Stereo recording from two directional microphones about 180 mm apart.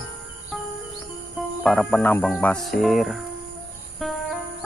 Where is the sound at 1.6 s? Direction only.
5° left (ahead or behind).